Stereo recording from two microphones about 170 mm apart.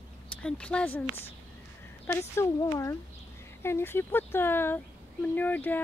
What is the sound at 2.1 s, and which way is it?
Speech, 15° left (ahead or behind).